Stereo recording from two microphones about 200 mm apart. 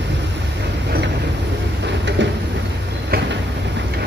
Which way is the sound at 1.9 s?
60° right (ahead or behind).